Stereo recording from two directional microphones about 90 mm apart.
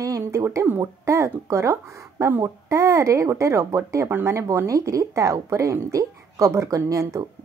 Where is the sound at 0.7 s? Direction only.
30° right (ahead or behind).